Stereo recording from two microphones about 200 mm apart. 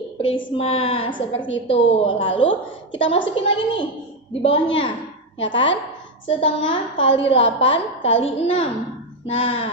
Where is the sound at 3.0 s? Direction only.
65° left (ahead or behind).